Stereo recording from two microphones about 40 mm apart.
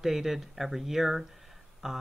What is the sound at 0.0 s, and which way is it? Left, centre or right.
Speech, centre.